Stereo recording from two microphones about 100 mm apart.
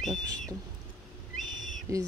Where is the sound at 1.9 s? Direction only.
35° right (ahead or behind).